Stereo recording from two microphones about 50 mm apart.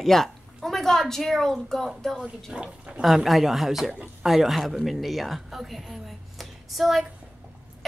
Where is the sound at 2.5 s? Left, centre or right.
Centre.